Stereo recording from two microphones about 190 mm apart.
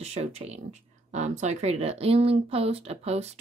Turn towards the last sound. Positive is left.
turn(degrees=-35)  # may be behind; listen again after turning